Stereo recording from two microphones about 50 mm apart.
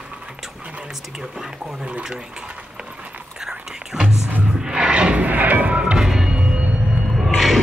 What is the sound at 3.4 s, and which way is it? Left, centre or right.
Whispering, centre.